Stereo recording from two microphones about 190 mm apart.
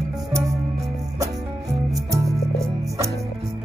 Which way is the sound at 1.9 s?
15° right (ahead or behind).